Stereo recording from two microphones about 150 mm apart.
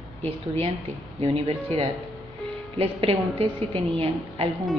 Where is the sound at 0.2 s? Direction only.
40° right (ahead or behind).